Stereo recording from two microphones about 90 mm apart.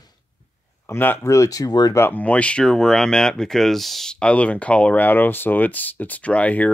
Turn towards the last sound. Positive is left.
turn(degrees=15)  # may be behind; listen again after turning